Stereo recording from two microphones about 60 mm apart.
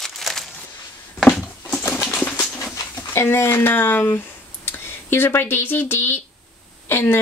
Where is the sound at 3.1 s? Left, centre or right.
Left.